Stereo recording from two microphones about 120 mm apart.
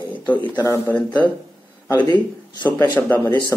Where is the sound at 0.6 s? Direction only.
25° left (ahead or behind).